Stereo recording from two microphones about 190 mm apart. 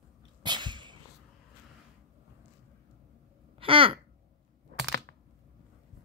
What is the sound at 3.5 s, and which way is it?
Babbling, 30° right (ahead or behind).